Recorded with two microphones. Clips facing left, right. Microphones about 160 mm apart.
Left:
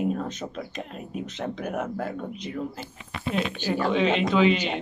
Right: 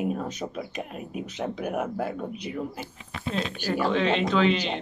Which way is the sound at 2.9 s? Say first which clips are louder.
Left 5 dB; 65° left (ahead or behind).